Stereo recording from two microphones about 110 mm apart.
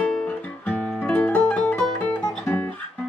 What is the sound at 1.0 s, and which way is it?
Music, 10° left (ahead or behind).